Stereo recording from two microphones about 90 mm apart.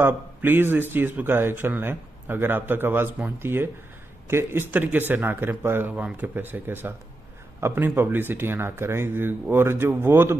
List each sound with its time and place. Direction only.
0.0 s a man's voice: 20° right (ahead or behind)